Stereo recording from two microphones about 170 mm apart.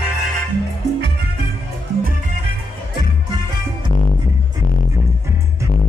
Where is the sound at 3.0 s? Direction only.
25° right (ahead or behind).